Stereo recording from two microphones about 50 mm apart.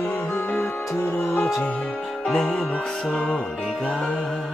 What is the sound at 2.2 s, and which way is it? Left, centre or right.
Music, centre.